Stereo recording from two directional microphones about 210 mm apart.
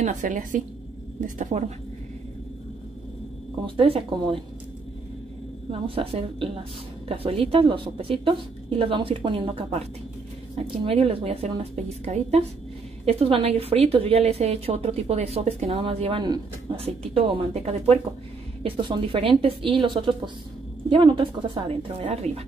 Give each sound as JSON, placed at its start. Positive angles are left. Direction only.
{"t": 0.0, "sound": "a woman's voice", "side_deg": -35}
{"t": 3.7, "sound": "a woman's voice", "side_deg": -25}
{"t": 5.7, "sound": "a woman's voice", "side_deg": -25}
{"t": 10.9, "sound": "a woman's voice", "side_deg": -25}